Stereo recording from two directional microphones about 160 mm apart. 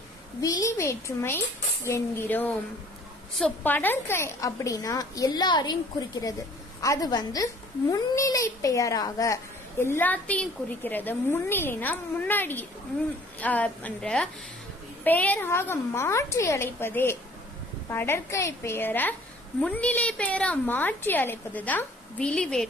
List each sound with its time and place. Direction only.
0.4 s a woman's voice: 20° left (ahead or behind); by 22.7 s 5° left (ahead or behind)